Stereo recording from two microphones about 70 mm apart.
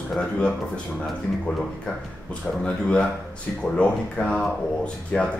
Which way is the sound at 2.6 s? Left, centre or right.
Centre.